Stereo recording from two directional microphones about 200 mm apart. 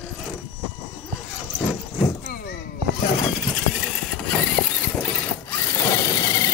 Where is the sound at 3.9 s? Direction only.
5° left (ahead or behind).